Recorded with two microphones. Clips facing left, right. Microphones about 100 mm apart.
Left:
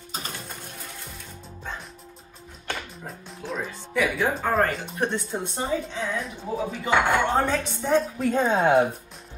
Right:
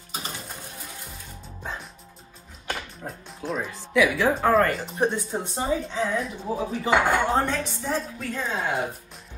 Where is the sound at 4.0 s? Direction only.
80° right.